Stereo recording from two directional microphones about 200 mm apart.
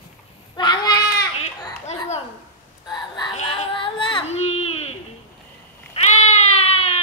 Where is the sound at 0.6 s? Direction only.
20° left (ahead or behind).